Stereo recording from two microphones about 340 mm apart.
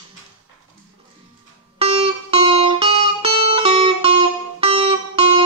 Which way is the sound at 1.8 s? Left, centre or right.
Centre.